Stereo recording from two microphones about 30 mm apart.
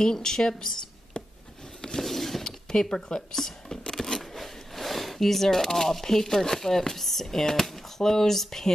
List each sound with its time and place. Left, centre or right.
0.0 s speech: left
2.0 s a sound: centre
2.4 s speech: left
4.4 s speech: centre